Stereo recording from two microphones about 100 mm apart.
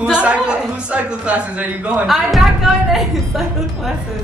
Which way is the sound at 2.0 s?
Centre (ahead or behind).